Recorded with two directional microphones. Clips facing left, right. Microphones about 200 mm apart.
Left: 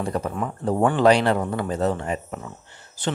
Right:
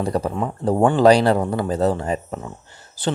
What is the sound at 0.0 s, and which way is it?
Speech, 35° right (ahead or behind).